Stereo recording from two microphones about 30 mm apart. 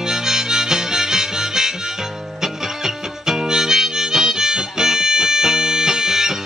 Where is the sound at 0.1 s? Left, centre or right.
Centre.